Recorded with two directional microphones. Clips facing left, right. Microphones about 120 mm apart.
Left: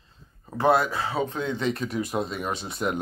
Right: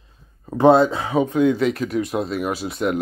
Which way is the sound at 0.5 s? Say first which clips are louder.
Right 8 dB; 20° right (ahead or behind).